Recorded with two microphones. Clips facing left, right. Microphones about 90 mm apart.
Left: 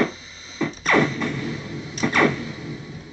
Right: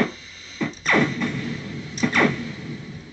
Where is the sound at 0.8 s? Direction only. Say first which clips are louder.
Left 1 dB; 20° left (ahead or behind).